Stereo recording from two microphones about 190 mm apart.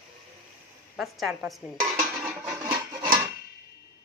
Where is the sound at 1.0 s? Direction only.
Centre (ahead or behind).